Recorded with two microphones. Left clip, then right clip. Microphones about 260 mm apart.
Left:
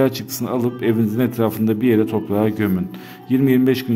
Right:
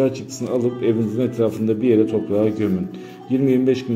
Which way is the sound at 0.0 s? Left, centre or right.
Left.